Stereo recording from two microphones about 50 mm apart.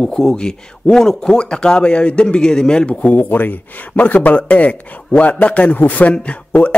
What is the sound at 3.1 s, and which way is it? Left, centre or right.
A man's voice, left.